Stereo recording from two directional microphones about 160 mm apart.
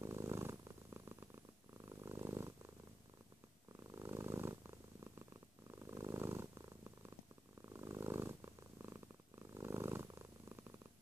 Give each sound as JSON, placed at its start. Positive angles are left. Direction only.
{"t": 0.0, "sound": "purr", "side_deg": -15}
{"t": 3.8, "sound": "purr", "side_deg": -15}
{"t": 7.7, "sound": "purr", "side_deg": -20}